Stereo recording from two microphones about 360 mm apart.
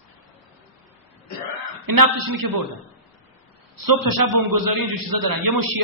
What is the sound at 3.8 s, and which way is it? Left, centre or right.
A man's voice, right.